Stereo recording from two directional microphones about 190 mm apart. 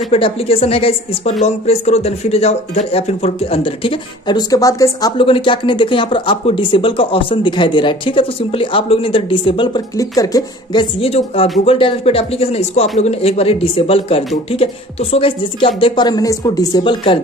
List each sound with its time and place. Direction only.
0.1 s speech: 30° left (ahead or behind)